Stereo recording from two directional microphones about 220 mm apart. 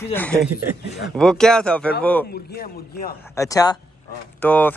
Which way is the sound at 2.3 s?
45° left (ahead or behind).